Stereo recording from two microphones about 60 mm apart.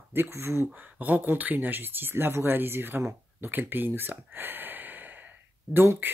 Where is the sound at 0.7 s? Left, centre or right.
Right.